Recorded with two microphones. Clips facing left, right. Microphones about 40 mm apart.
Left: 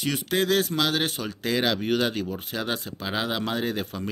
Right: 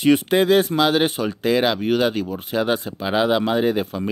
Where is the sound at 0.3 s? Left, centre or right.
Centre.